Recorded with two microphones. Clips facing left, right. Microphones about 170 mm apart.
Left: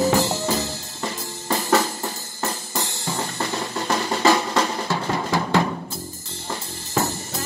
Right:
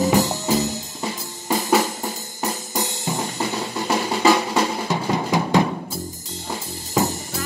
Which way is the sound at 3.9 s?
10° right (ahead or behind).